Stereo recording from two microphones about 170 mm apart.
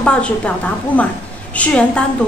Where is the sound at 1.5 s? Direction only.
10° left (ahead or behind).